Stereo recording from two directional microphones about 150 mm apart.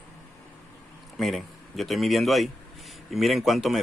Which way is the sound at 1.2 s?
Centre (ahead or behind).